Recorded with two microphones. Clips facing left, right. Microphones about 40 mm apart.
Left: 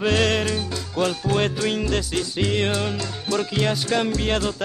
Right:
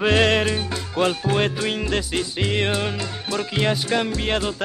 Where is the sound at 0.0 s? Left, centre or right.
Right.